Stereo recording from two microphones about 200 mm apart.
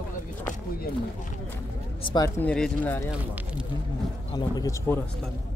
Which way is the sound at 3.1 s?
5° right (ahead or behind).